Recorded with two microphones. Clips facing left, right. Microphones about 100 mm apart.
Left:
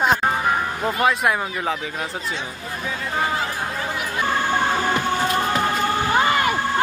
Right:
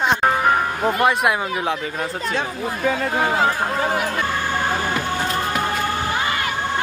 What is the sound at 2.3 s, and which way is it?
Speech, 60° right (ahead or behind).